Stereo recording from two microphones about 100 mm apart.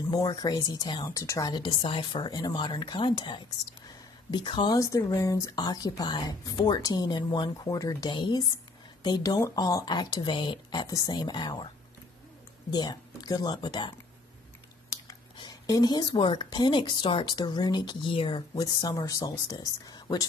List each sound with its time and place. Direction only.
0.3 s speech: 40° left (ahead or behind)
1.1 s speech: 35° left (ahead or behind)
1.5 s speech: 50° left (ahead or behind)
4.7 s speech: 35° left (ahead or behind); by 7.6 s 50° left (ahead or behind)
7.6 s speech: 40° left (ahead or behind)
9.4 s speech: 35° left (ahead or behind)
12.7 s speech: 45° left (ahead or behind)
15.0 s whispering: 40° left (ahead or behind)
15.8 s speech: 45° left (ahead or behind)
18.5 s speech: 35° left (ahead or behind)